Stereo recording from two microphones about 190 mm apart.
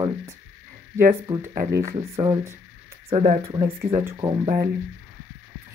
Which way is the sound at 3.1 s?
40° right (ahead or behind).